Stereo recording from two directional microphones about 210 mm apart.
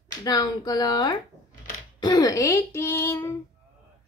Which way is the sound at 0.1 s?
20° left (ahead or behind).